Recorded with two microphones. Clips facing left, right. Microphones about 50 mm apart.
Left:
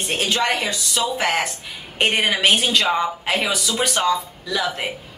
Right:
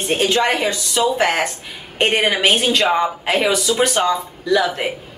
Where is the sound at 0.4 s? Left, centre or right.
Right.